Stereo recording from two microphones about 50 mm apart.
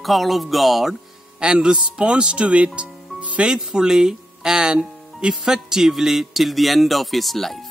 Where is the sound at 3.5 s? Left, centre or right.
Centre.